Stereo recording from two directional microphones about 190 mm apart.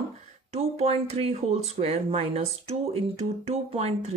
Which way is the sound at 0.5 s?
35° right (ahead or behind).